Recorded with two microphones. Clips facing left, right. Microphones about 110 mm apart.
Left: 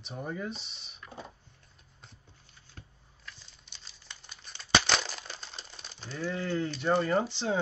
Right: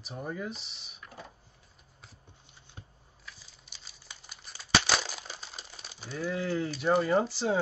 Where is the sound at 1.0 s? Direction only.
25° left (ahead or behind).